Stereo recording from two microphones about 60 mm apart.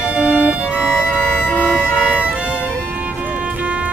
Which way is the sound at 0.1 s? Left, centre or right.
Right.